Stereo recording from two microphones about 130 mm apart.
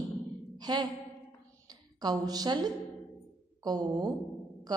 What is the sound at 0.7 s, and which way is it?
Speech, 30° right (ahead or behind).